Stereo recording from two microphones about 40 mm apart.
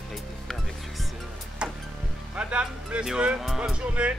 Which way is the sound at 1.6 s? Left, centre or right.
Right.